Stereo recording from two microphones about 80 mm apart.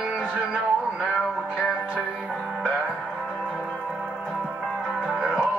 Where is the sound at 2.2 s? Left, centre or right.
Centre.